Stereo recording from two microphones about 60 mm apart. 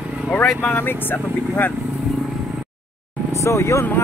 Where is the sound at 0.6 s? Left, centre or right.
Left.